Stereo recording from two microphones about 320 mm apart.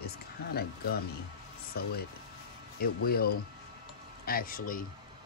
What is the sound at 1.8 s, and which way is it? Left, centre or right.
Speech, left.